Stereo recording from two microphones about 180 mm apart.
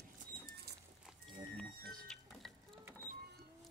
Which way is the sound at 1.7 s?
55° right (ahead or behind).